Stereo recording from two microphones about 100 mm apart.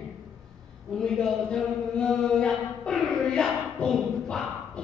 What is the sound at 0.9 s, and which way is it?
A man's voice, 5° left (ahead or behind).